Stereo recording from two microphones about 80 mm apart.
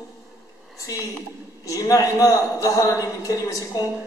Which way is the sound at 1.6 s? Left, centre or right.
Left.